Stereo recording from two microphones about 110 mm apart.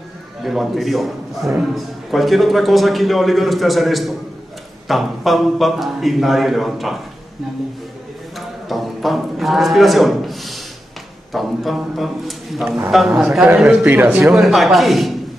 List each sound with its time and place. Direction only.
0.4 s speech: centre (ahead or behind)
8.4 s a sound: centre (ahead or behind)
11.3 s speech: centre (ahead or behind)
13.8 s speech: 15° right (ahead or behind)
14.3 s speech: centre (ahead or behind)